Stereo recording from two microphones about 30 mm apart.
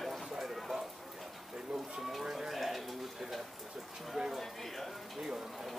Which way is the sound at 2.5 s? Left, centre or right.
Centre.